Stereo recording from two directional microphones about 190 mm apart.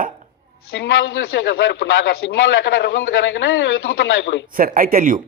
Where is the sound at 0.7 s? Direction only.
70° left (ahead or behind).